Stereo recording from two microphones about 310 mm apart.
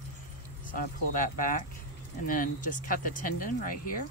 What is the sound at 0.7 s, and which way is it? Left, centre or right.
Speech, left.